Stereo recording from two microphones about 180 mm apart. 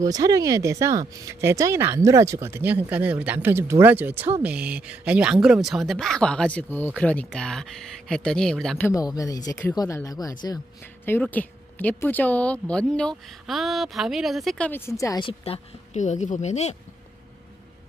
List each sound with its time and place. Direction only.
0.0 s speech: 20° right (ahead or behind); by 8.8 s 5° left (ahead or behind)
8.8 s speech: 20° left (ahead or behind); by 16.7 s 40° left (ahead or behind)